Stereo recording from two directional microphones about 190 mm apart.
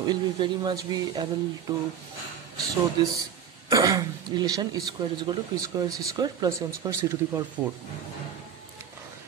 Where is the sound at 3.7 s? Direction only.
15° right (ahead or behind).